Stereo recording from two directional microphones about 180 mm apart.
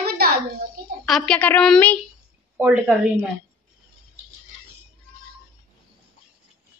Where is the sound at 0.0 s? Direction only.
60° right (ahead or behind).